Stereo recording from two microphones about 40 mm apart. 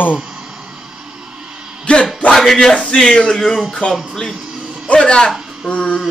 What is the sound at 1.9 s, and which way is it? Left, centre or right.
Speech, left.